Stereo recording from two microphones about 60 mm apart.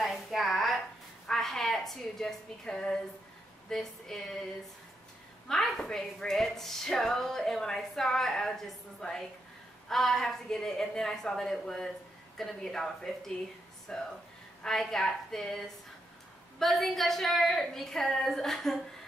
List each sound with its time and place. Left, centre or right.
0.0 s a sound: centre
1.2 s a woman's voice: centre
5.5 s a woman's voice: centre